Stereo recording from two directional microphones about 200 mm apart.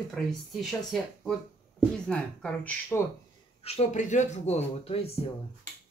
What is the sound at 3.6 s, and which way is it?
Speech, 30° left (ahead or behind).